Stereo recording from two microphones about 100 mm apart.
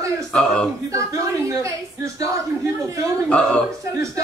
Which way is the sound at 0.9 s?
30° right (ahead or behind).